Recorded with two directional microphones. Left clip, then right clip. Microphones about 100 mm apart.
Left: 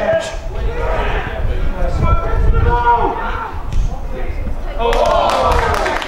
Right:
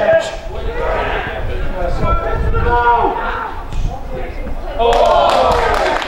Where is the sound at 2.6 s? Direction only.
5° left (ahead or behind).